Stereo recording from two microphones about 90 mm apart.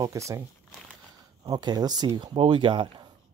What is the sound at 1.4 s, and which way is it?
Speech, 55° right (ahead or behind).